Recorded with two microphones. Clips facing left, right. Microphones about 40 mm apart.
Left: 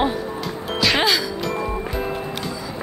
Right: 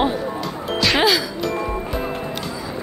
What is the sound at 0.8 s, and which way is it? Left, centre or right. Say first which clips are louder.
Music: right 1 dB; centre.